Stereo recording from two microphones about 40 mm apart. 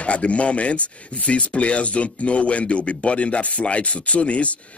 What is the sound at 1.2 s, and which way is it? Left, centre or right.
Speech, left.